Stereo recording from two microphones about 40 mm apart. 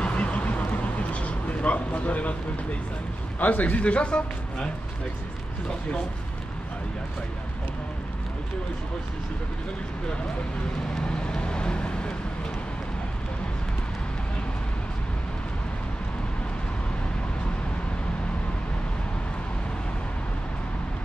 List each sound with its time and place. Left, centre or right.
0.0 s duck: left
1.1 s a sound: left
3.3 s speech: left
11.0 s vehicle: left